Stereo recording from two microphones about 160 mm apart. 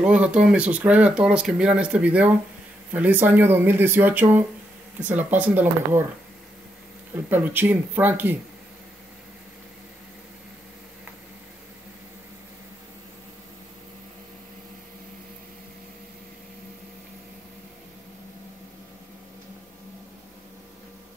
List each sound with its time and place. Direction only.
0.0 s speech: 10° right (ahead or behind)
7.2 s speech: 10° right (ahead or behind)